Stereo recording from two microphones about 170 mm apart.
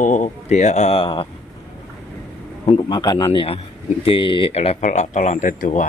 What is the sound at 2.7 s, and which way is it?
Speech, 25° left (ahead or behind).